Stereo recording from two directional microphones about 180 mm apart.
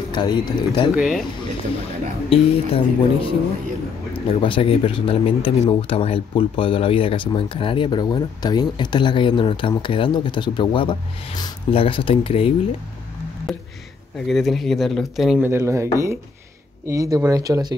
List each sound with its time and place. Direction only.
0.1 s speech: 25° left (ahead or behind)
0.9 s speech: 5° right (ahead or behind)
2.2 s speech: 30° left (ahead or behind)
4.4 s speech: 30° left (ahead or behind)
13.5 s speech: centre (ahead or behind)
15.4 s speech: 15° right (ahead or behind)